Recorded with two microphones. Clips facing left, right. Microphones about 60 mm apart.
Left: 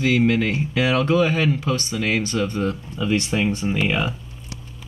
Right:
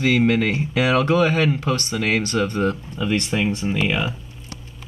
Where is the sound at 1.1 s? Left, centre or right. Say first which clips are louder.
Right 1 dB; right.